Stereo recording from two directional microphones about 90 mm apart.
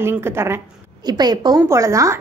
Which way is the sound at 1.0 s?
50° right (ahead or behind).